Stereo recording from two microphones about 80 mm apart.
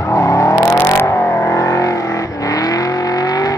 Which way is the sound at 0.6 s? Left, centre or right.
Left.